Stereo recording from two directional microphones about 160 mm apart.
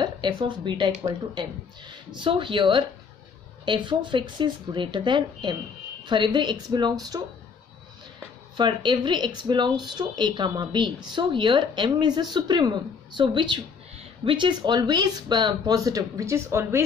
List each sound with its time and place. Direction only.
0.0 s speech: 25° right (ahead or behind)
8.5 s speech: 30° right (ahead or behind)